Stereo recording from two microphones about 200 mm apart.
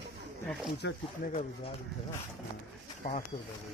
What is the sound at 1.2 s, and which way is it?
Speech, 45° left (ahead or behind).